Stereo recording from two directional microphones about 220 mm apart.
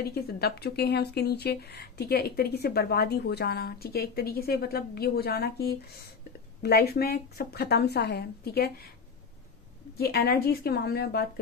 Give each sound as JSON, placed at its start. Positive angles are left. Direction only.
{"t": 0.1, "sound": "speech", "side_deg": 45}
{"t": 9.9, "sound": "speech", "side_deg": 45}